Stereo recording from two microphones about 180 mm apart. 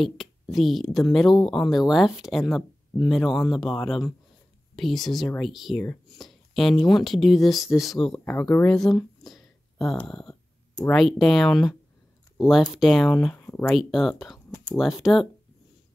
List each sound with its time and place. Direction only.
0.0 s a woman's voice: centre (ahead or behind)